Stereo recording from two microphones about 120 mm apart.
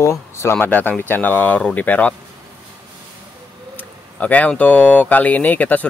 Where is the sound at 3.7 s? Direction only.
10° left (ahead or behind).